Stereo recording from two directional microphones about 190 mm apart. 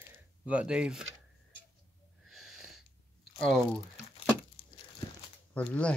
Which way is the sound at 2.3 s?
Centre (ahead or behind).